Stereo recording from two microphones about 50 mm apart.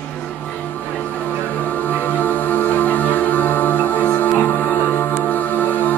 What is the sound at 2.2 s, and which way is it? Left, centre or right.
Music, left.